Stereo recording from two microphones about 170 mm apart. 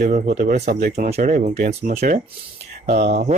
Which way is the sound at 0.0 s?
45° right (ahead or behind).